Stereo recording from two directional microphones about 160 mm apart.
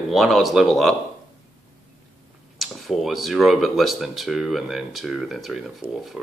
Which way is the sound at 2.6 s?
Centre (ahead or behind).